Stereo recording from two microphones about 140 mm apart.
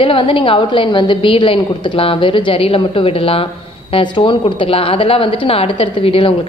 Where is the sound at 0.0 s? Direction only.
40° left (ahead or behind).